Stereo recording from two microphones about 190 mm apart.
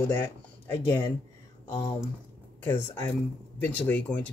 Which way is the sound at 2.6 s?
10° left (ahead or behind).